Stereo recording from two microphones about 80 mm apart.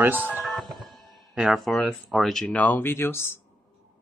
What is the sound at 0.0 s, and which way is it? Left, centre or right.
Speech, right.